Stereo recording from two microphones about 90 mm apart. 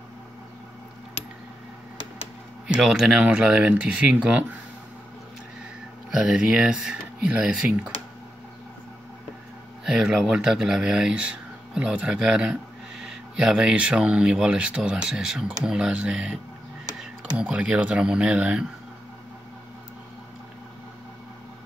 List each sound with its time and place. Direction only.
2.7 s speech: 5° right (ahead or behind)
6.1 s speech: 5° right (ahead or behind)
9.8 s speech: 5° right (ahead or behind)